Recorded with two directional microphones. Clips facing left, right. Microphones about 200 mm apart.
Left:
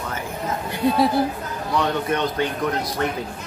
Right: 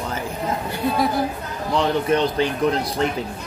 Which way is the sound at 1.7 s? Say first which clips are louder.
Right 3 dB; 25° right (ahead or behind).